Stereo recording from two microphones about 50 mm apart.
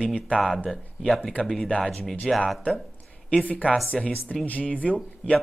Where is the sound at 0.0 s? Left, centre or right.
Left.